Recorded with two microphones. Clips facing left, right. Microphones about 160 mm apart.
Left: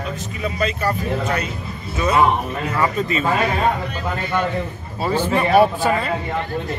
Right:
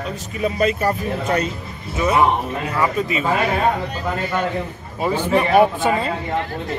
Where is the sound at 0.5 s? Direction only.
45° right (ahead or behind).